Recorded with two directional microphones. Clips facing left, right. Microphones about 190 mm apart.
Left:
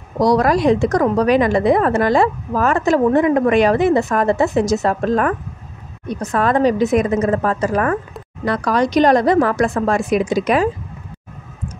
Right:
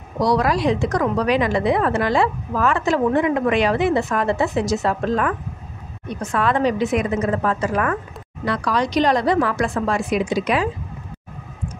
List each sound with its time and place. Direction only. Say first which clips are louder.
0.2 s a woman's voice: left 4 dB; 45° left (ahead or behind)